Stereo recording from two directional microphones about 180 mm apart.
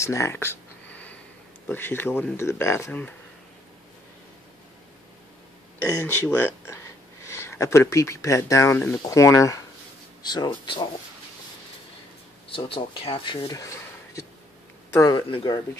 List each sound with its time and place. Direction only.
0.0 s a sound: 15° left (ahead or behind)
1.7 s speech: 10° left (ahead or behind)
5.8 s speech: 10° left (ahead or behind)
12.4 s speech: 30° left (ahead or behind)